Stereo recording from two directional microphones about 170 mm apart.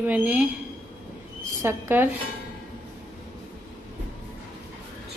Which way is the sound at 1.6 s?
15° right (ahead or behind).